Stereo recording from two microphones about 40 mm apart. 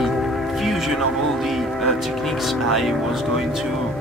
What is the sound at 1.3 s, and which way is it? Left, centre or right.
Speech, centre.